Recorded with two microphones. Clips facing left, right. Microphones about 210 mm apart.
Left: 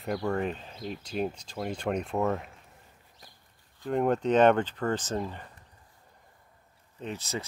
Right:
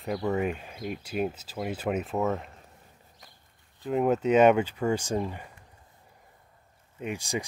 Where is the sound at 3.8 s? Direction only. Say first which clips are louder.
Right 1 dB; 5° right (ahead or behind).